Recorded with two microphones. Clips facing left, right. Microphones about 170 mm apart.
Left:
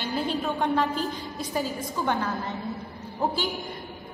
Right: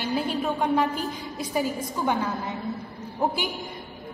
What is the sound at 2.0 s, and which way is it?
Speech, 15° right (ahead or behind).